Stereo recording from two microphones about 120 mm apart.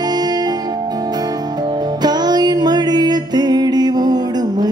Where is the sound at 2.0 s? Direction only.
35° right (ahead or behind).